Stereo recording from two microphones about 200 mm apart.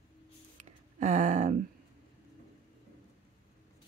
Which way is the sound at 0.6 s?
35° right (ahead or behind).